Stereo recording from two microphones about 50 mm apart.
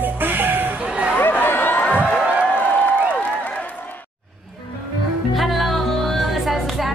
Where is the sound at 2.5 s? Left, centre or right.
Left.